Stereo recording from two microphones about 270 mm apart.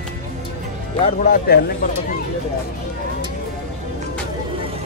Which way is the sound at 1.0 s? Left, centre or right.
Left.